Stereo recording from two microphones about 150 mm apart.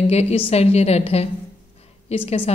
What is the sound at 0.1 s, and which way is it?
A woman's voice, 45° left (ahead or behind).